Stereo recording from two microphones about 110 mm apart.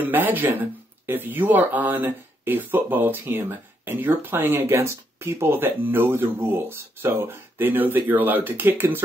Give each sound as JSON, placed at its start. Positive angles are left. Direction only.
{"t": 0.0, "sound": "speech", "side_deg": -15}